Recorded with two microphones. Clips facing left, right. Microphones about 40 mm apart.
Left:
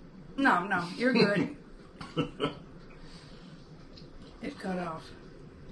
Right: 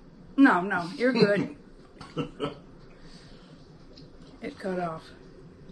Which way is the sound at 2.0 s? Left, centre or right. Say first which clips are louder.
Even; centre.